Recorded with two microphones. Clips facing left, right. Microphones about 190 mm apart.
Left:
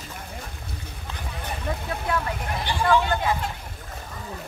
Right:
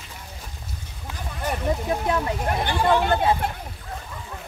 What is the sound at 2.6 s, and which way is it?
Speech, 55° right (ahead or behind).